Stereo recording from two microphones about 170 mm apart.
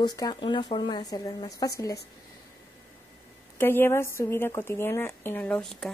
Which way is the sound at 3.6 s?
15° left (ahead or behind).